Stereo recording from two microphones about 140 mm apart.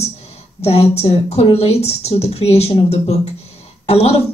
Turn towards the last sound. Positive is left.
turn(degrees=50)  # may be behind; listen again after turning